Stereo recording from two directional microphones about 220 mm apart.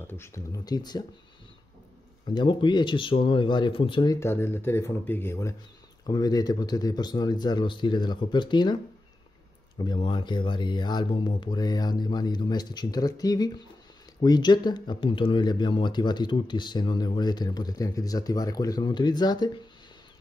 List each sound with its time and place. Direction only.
0.0 s speech: 10° left (ahead or behind)
2.2 s speech: 20° left (ahead or behind)
9.8 s speech: 20° left (ahead or behind)